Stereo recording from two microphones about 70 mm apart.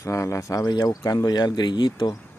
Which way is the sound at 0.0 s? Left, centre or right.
Left.